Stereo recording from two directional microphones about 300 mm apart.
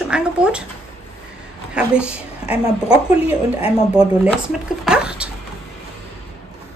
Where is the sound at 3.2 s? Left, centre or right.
Centre.